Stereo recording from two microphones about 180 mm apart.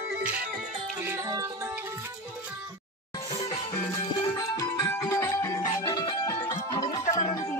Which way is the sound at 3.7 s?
20° left (ahead or behind).